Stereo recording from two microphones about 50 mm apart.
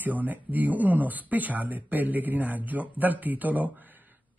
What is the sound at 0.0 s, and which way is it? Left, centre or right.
Speech, right.